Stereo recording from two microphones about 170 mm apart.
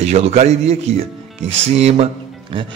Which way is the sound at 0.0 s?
40° right (ahead or behind).